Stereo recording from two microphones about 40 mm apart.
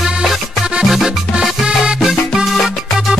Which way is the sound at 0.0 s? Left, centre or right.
Centre.